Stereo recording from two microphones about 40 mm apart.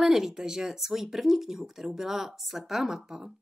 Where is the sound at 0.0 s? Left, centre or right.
Centre.